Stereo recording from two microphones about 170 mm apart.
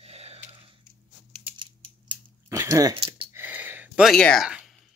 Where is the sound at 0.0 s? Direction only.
35° right (ahead or behind).